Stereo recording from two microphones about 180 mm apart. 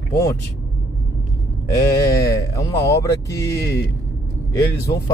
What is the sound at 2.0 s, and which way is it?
Speech, 15° left (ahead or behind).